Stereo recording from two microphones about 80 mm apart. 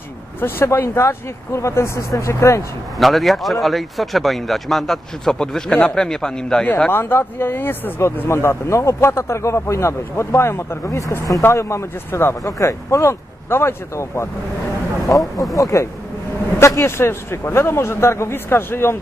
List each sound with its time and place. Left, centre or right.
0.4 s speech: left
3.0 s speech: centre
6.9 s speech: left
15.0 s speech: left